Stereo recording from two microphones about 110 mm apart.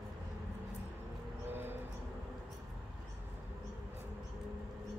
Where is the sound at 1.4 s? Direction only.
20° right (ahead or behind).